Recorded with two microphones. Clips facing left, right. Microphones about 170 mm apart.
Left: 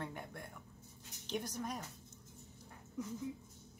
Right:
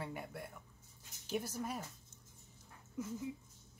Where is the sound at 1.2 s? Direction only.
5° right (ahead or behind).